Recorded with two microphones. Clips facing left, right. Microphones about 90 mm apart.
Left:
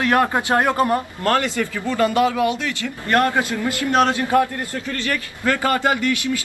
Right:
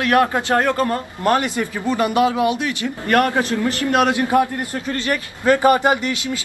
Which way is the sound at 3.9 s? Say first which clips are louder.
Even; 15° right (ahead or behind).